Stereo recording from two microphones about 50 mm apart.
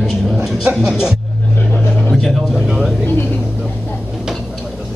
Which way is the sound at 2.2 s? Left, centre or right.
Centre.